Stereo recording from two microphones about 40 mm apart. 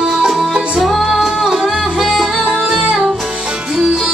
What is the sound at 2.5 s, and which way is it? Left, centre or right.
Music, centre.